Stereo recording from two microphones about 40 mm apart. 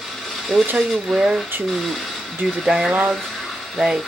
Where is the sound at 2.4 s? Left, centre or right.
Centre.